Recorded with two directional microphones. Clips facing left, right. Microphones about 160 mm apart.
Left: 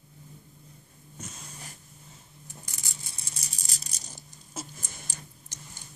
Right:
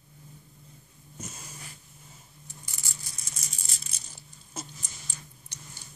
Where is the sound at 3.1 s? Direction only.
30° left (ahead or behind).